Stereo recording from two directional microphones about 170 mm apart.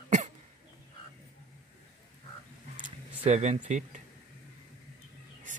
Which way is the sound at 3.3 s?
40° right (ahead or behind).